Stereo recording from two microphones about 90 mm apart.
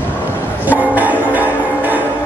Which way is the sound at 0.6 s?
20° right (ahead or behind).